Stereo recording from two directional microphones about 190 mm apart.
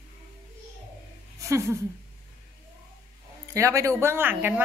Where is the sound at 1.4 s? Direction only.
15° right (ahead or behind).